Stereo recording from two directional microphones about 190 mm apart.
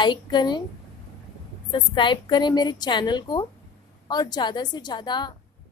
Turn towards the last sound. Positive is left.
turn(degrees=25)  # may be behind; listen again after turning